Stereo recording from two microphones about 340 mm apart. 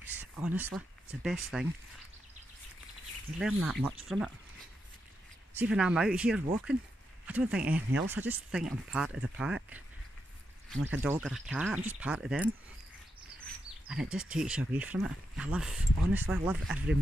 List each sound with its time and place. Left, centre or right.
0.2 s speech: centre
3.3 s speech: centre
5.6 s speech: centre
13.8 s speech: centre